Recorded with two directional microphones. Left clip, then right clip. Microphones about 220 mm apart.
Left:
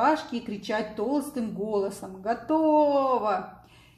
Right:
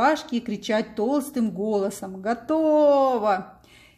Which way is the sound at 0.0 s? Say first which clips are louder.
Right 3 dB; 40° right (ahead or behind).